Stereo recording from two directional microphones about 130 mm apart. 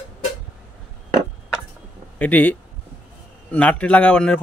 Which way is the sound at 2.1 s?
10° left (ahead or behind).